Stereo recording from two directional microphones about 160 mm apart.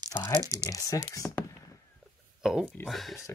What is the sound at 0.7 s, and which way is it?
Speech, 20° left (ahead or behind).